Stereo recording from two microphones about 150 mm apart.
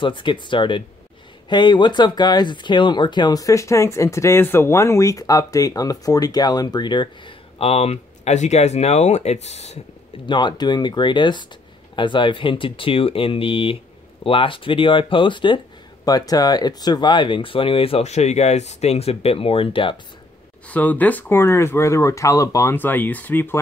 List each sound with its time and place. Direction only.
0.0 s speech: 35° left (ahead or behind)
10.2 s speech: 30° left (ahead or behind)
20.6 s speech: 10° left (ahead or behind)